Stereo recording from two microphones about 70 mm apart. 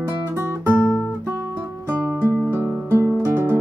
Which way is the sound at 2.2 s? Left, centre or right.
Right.